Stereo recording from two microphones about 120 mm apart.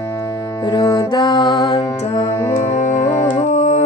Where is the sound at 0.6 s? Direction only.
40° left (ahead or behind).